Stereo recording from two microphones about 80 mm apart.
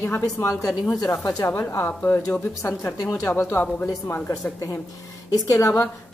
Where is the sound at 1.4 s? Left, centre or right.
Left.